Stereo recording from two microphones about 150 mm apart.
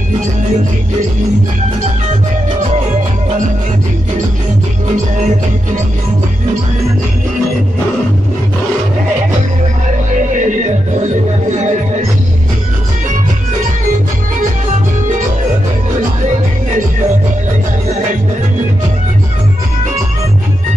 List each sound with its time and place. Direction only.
10.3 s music: 55° right (ahead or behind)